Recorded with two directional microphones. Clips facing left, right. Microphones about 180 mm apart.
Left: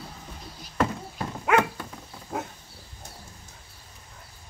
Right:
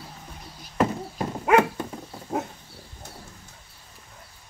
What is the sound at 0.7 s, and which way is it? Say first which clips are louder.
Horse: right 3 dB; 25° right (ahead or behind).